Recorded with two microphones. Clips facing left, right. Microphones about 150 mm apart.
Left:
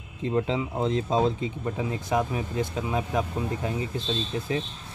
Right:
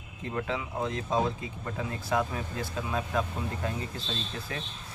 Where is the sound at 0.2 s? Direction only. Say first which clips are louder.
Left 7 dB; 25° left (ahead or behind).